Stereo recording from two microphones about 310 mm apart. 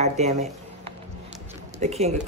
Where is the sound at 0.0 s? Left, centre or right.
Right.